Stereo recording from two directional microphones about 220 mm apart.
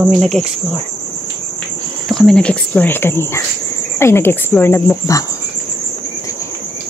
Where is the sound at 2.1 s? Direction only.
5° left (ahead or behind).